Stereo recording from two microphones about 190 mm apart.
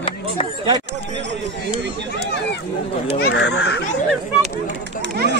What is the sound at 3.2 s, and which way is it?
Speech, 65° left (ahead or behind).